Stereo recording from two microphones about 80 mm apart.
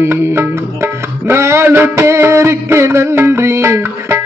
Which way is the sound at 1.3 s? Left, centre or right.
Right.